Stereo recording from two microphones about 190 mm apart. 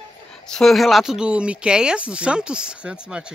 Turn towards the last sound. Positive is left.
turn(degrees=-5)  # may be behind; listen again after turning